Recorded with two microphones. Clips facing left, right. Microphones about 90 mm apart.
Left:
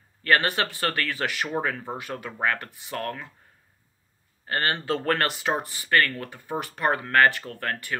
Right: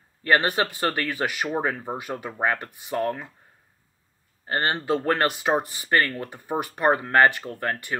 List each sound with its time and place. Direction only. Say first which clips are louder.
0.2 s speech: right 2 dB; 20° right (ahead or behind)
4.5 s speech: right 2 dB; 20° right (ahead or behind)